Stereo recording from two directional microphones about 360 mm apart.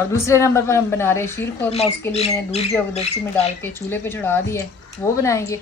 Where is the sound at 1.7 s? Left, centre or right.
Centre.